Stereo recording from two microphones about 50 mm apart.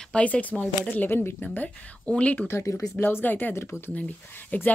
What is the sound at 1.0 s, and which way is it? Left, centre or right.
Speech, left.